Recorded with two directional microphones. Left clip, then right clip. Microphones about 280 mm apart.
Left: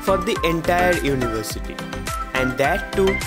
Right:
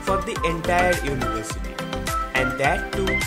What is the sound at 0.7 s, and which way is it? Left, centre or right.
Speech, left.